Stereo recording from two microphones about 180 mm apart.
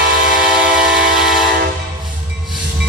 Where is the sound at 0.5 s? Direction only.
55° right (ahead or behind).